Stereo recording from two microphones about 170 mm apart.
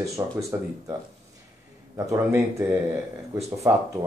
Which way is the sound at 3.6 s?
15° right (ahead or behind).